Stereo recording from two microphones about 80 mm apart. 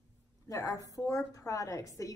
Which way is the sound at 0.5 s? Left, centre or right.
Left.